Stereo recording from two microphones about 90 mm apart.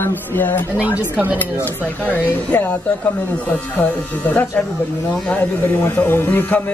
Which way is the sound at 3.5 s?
20° left (ahead or behind).